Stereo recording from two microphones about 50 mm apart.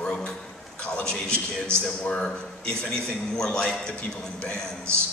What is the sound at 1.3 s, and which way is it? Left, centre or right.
Speech, right.